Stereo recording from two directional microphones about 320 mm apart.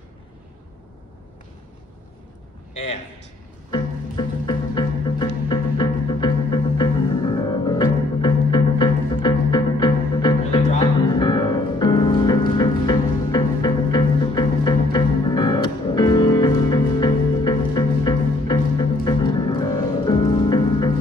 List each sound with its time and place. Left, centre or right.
3.7 s music: centre